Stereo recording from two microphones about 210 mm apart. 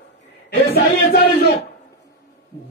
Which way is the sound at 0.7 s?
50° left (ahead or behind).